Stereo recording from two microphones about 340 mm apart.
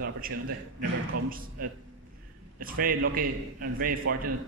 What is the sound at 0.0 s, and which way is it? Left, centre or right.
A man's voice, right.